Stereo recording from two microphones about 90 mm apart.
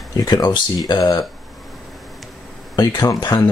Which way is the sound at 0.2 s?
55° left (ahead or behind).